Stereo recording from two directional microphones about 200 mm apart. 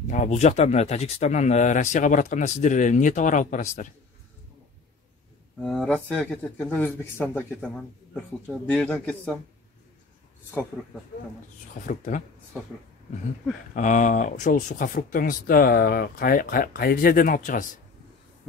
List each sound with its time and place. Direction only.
0.1 s speech: 35° left (ahead or behind)
5.6 s speech: 5° left (ahead or behind)
11.8 s speech: 40° left (ahead or behind)
13.7 s speech: 40° left (ahead or behind)